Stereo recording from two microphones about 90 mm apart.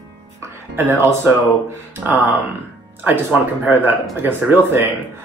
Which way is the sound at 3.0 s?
20° right (ahead or behind).